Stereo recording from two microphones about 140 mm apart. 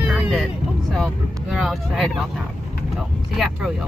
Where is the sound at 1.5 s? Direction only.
5° right (ahead or behind).